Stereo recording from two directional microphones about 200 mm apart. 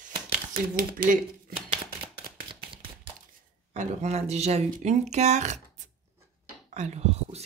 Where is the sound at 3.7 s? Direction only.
35° right (ahead or behind).